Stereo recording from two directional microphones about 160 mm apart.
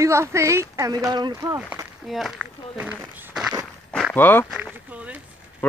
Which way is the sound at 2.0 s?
Centre (ahead or behind).